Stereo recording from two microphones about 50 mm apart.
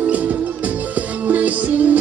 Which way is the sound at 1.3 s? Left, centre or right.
Right.